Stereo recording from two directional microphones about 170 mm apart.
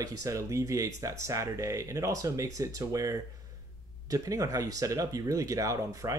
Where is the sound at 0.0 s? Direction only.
20° right (ahead or behind).